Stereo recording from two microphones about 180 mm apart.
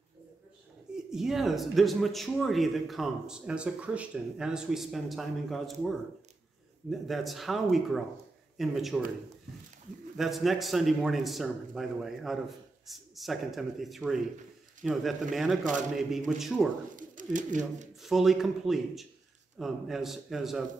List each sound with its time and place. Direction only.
0.9 s a man's voice: centre (ahead or behind)
10.1 s a man's voice: centre (ahead or behind)
16.9 s pigeon: 45° right (ahead or behind)
18.0 s a man's voice: centre (ahead or behind)